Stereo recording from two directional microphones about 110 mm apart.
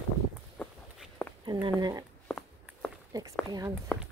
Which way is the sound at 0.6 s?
15° left (ahead or behind).